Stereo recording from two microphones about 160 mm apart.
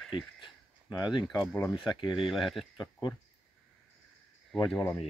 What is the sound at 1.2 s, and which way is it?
Speech, centre (ahead or behind).